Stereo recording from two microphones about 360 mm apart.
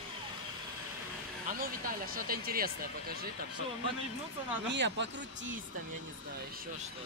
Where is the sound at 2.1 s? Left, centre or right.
Right.